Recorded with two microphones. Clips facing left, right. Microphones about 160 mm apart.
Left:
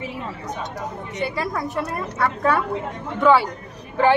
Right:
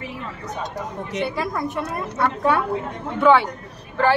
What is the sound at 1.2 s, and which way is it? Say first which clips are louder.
A woman's voice: even; centre (ahead or behind).